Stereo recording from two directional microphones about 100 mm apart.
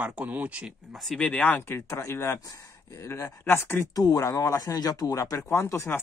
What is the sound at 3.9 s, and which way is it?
Speech, 40° left (ahead or behind).